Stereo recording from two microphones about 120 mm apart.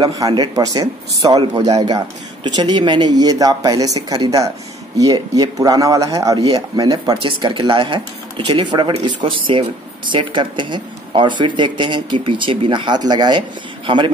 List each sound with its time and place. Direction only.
0.0 s speech: 40° right (ahead or behind)
6.3 s speech: 40° right (ahead or behind)
7.2 s speech: 45° right (ahead or behind)